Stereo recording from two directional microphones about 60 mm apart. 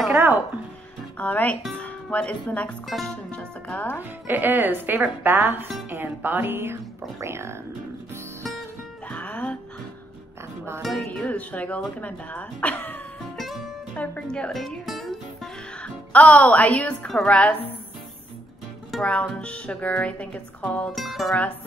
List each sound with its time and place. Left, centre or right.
0.1 s a sound: right
1.1 s speech: left
2.9 s speech: centre
4.3 s speech: right
9.1 s music: left
10.8 s speech: centre
11.1 s speech: left
13.4 s music: centre
14.2 s speech: centre
14.5 s music: centre
15.8 s speech: left
19.0 s speech: centre
20.9 s speech: centre